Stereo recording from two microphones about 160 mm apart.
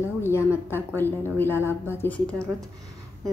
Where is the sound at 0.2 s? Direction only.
15° left (ahead or behind).